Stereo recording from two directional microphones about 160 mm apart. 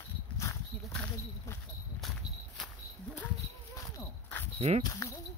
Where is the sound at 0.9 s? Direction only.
10° left (ahead or behind).